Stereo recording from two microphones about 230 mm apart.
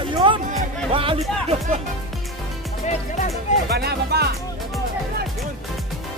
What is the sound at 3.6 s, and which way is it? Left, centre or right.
Speech, right.